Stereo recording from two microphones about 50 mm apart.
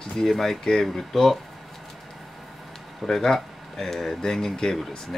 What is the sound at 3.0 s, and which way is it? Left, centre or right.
Speech, centre.